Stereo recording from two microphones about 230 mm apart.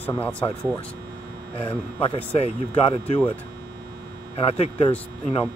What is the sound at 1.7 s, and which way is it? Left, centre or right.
Speech, left.